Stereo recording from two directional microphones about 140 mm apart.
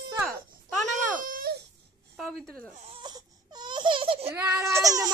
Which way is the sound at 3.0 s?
30° right (ahead or behind).